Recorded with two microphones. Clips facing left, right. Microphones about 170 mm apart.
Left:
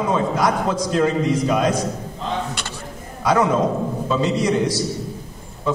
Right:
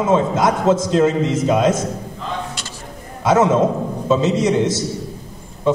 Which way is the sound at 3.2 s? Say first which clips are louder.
Right 3 dB; 25° right (ahead or behind).